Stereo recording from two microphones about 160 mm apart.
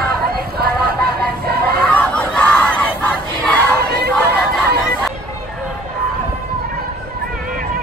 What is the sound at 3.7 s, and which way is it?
Crowd, 85° right.